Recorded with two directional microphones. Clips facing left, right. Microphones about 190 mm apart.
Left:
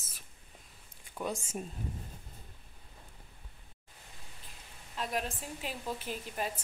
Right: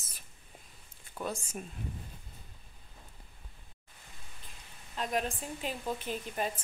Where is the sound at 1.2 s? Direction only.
20° left (ahead or behind).